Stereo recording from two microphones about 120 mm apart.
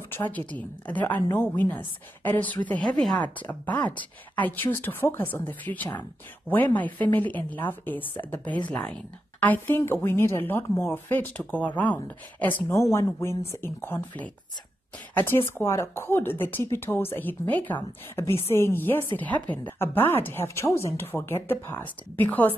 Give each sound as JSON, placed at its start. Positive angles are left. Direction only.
{"t": 0.1, "sound": "a woman's voice", "side_deg": 15}